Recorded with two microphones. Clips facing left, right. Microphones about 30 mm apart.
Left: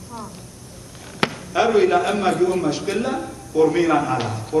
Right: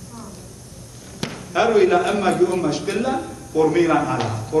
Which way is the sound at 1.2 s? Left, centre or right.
Centre.